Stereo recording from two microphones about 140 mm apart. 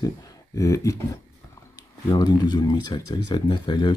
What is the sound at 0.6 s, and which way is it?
Speech, 20° left (ahead or behind).